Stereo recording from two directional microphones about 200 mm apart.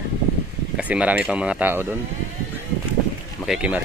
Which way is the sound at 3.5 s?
5° right (ahead or behind).